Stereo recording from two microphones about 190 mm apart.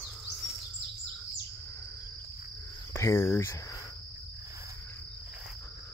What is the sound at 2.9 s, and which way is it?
Speech, 15° left (ahead or behind).